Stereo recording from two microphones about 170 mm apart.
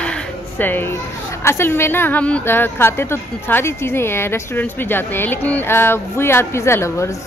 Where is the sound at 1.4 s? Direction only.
15° left (ahead or behind).